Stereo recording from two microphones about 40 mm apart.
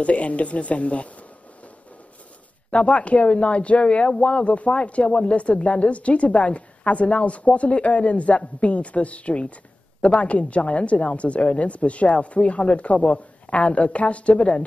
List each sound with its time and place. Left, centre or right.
0.0 s speech: left
2.7 s speech: left
13.5 s speech: left